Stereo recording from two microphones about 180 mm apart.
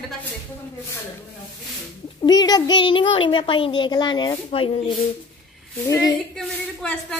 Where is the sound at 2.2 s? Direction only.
20° left (ahead or behind).